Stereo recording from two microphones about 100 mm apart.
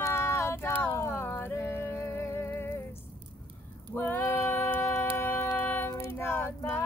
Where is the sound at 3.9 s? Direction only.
20° left (ahead or behind).